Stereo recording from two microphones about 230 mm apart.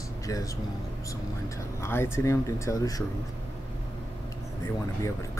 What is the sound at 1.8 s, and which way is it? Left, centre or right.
Speech, centre.